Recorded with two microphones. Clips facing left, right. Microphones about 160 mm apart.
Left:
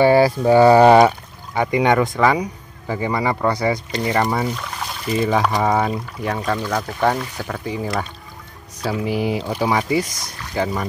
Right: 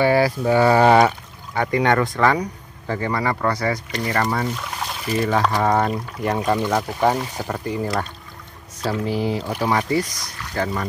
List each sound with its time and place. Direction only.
0.0 s speech: 30° left (ahead or behind)
4.5 s a sound: 5° right (ahead or behind)
5.1 s speech: 10° left (ahead or behind)